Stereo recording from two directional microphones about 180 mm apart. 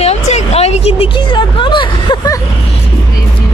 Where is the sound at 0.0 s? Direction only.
35° left (ahead or behind).